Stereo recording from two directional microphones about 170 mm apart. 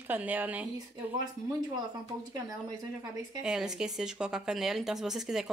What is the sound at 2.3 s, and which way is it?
Speech, 20° right (ahead or behind).